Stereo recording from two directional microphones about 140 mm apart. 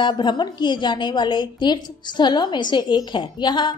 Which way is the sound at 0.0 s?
35° left (ahead or behind).